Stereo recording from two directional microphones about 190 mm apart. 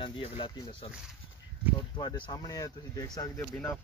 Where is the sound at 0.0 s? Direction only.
25° left (ahead or behind).